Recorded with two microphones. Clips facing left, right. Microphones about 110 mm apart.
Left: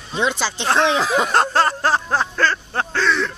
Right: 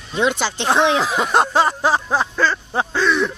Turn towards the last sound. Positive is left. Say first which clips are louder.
# right 2 dB
turn(degrees=-10)  # may be behind; listen again after turning